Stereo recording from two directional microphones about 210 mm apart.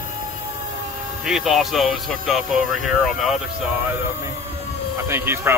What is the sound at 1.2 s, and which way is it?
Speech, centre (ahead or behind).